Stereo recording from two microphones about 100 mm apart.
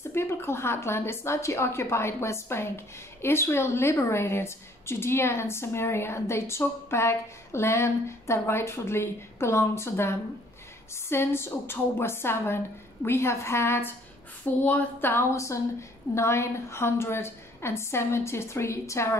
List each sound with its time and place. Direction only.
0.1 s a woman's voice: 25° left (ahead or behind)